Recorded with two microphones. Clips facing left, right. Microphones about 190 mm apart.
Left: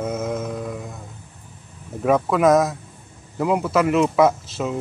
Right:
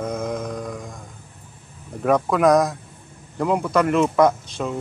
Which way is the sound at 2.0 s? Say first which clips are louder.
Even; centre (ahead or behind).